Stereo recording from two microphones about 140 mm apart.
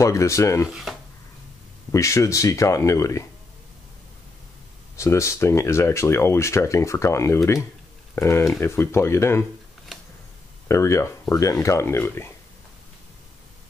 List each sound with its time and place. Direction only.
0.0 s speech: 20° left (ahead or behind)
0.7 s speech: centre (ahead or behind)
1.9 s speech: 20° left (ahead or behind)
4.9 s speech: 20° left (ahead or behind)
10.7 s speech: 20° left (ahead or behind)